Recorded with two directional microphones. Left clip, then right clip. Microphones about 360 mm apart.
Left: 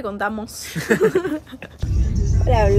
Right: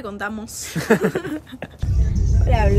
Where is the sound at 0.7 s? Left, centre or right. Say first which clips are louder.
Left 1 dB; centre.